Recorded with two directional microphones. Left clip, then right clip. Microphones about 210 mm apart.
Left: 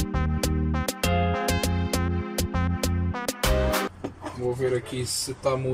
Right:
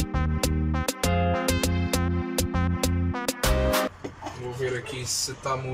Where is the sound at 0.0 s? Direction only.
Centre (ahead or behind).